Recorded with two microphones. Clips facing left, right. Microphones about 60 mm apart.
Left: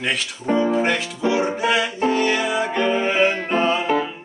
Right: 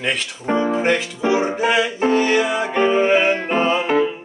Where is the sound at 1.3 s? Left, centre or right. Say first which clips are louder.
Right 2 dB; centre.